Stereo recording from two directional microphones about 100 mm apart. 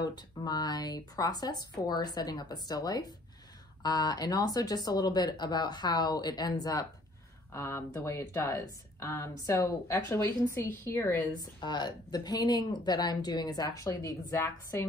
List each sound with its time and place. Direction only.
0.0 s speech: 45° left (ahead or behind); by 11.2 s 25° left (ahead or behind)
11.3 s speech: 45° left (ahead or behind)